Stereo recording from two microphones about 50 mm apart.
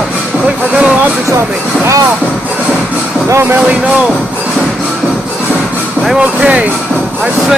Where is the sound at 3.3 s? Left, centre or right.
Right.